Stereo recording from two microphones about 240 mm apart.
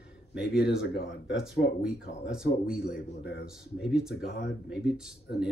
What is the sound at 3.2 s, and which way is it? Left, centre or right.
Speech, left.